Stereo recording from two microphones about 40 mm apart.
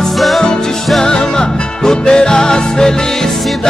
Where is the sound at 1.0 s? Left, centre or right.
Centre.